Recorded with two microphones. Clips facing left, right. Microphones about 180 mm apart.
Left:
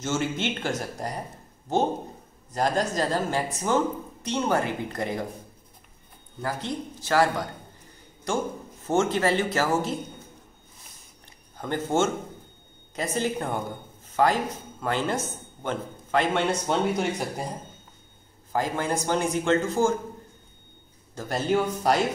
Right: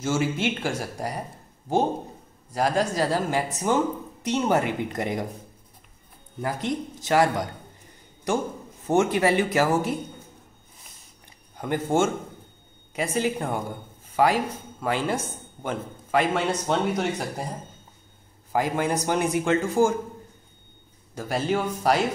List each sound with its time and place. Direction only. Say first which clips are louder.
0.0 s speech: right 3 dB; 10° right (ahead or behind)
2.5 s speech: right 1 dB; 5° right (ahead or behind)
6.4 s a man's voice: right 3 dB; 20° right (ahead or behind)
8.8 s speech: right 2 dB; 15° right (ahead or behind)
11.5 s a man's voice: right 2 dB; 15° right (ahead or behind)
18.5 s speech: right 2 dB; 15° right (ahead or behind)
21.1 s a sound: right 2 dB; 15° right (ahead or behind)
21.5 s speech: left 1 dB; centre (ahead or behind)